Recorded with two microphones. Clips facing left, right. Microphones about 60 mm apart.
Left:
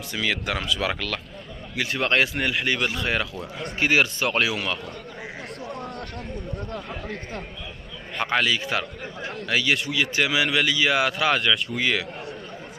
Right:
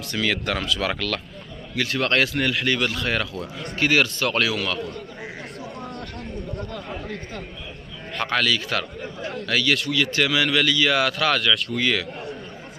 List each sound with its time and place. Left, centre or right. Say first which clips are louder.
0.1 s speech: right 2 dB; centre
8.2 s speech: even; centre